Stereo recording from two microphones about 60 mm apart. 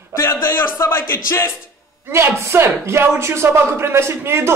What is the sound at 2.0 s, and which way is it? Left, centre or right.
A man's voice, right.